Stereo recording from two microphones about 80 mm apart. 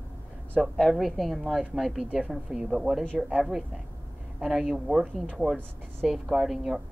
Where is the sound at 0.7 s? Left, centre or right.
Centre.